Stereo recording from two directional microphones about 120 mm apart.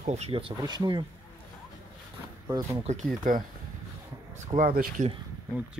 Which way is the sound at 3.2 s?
90° right.